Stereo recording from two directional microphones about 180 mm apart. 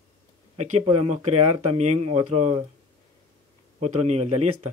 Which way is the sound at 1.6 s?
35° right (ahead or behind).